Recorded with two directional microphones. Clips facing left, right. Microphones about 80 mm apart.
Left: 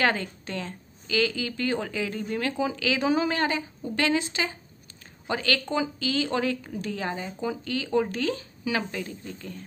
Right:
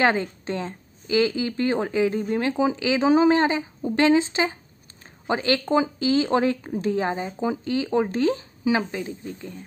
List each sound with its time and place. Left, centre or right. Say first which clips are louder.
0.0 s a woman's voice: right 4 dB; right